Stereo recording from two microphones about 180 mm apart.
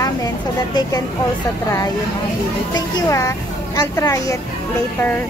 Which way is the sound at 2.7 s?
15° left (ahead or behind).